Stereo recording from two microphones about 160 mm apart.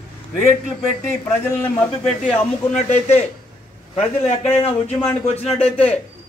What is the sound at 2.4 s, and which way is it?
Speech, 40° left (ahead or behind).